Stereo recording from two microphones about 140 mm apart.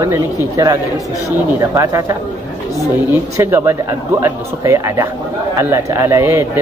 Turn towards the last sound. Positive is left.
turn(degrees=-20)  # may be behind; listen again after turning